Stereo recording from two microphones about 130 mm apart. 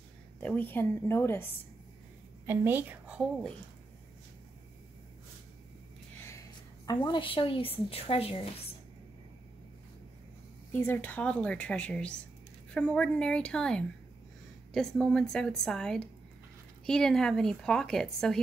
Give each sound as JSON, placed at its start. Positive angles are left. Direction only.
{"t": 0.4, "sound": "a woman's voice", "side_deg": 10}
{"t": 2.4, "sound": "a woman's voice", "side_deg": -15}
{"t": 6.1, "sound": "a sound", "side_deg": 20}
{"t": 7.1, "sound": "a woman's voice", "side_deg": 40}
{"t": 10.7, "sound": "a woman's voice", "side_deg": 15}